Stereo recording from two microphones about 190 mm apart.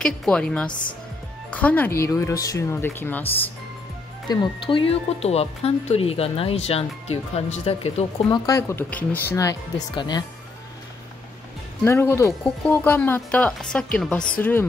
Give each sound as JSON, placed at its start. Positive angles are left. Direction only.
{"t": 0.0, "sound": "a woman's voice", "side_deg": 5}
{"t": 0.7, "sound": "speech", "side_deg": 25}
{"t": 1.5, "sound": "speech", "side_deg": 5}
{"t": 4.3, "sound": "speech", "side_deg": 25}
{"t": 8.5, "sound": "speech", "side_deg": 15}
{"t": 11.8, "sound": "speech", "side_deg": 10}